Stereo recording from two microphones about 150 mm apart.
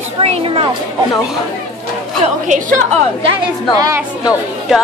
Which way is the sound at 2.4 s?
60° right (ahead or behind).